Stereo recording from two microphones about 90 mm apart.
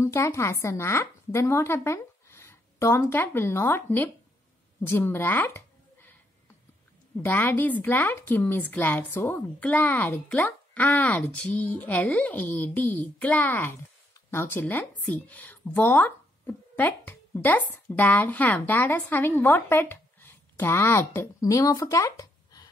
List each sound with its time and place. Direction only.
0.0 s a woman's voice: 30° left (ahead or behind)
7.2 s a woman's voice: 20° left (ahead or behind)
21.4 s speech: 40° left (ahead or behind)